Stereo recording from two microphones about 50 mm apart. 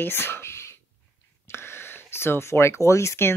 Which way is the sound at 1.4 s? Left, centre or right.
Left.